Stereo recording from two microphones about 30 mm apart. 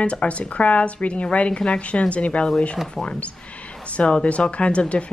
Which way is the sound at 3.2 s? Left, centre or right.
Left.